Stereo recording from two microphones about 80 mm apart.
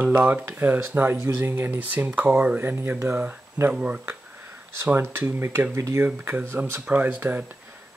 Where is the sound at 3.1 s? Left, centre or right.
Right.